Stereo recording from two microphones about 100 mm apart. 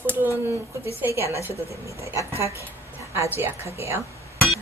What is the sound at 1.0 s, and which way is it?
Speech, 30° right (ahead or behind).